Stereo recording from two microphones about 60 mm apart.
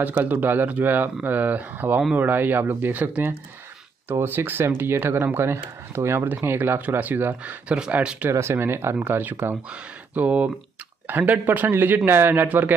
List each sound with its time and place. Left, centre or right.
0.0 s speech: right
7.6 s speech: centre
8.3 s speech: right